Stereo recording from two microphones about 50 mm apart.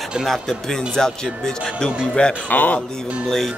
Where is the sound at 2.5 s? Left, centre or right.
Left.